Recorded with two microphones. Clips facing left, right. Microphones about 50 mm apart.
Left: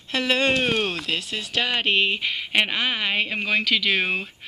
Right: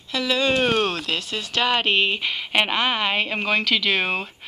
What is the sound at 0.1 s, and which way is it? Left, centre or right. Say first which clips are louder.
Speech: even; left.